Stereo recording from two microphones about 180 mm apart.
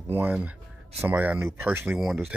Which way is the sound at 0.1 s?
10° right (ahead or behind).